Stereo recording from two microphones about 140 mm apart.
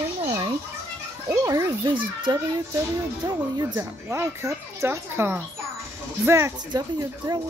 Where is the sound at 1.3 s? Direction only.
20° right (ahead or behind).